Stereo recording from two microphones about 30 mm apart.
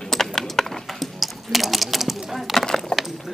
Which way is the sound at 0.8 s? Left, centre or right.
Centre.